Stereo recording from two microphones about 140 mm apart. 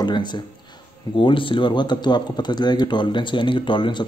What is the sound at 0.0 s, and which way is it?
Speech, 35° left (ahead or behind).